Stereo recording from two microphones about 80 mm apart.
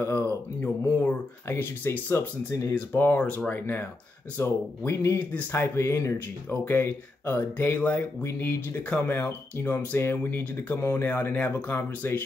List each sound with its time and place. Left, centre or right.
0.0 s speech: left
6.6 s speech: left